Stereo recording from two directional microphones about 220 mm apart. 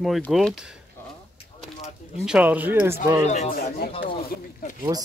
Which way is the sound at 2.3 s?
5° right (ahead or behind).